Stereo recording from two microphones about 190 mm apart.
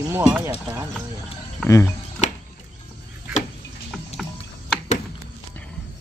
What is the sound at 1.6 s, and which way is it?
Speech, 15° left (ahead or behind).